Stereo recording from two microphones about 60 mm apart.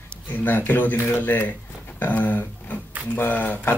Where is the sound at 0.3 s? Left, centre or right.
Left.